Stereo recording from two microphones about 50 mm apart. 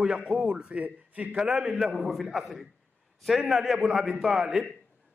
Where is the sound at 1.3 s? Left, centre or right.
Centre.